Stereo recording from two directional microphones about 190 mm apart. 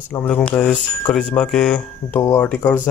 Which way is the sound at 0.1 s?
10° left (ahead or behind).